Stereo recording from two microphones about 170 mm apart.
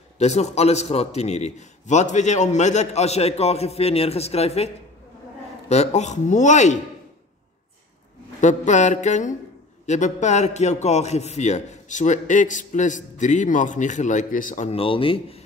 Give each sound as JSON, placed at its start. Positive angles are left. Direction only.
{"t": 0.2, "sound": "a man's voice", "side_deg": 40}
{"t": 5.7, "sound": "a man's voice", "side_deg": 40}
{"t": 8.4, "sound": "a man's voice", "side_deg": 45}